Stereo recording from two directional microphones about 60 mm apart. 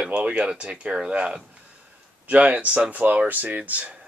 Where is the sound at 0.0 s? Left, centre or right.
Right.